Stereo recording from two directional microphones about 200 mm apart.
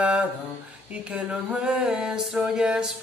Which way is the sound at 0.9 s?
5° right (ahead or behind).